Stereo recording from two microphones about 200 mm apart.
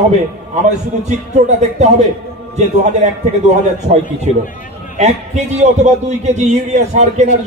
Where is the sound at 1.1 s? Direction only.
35° right (ahead or behind).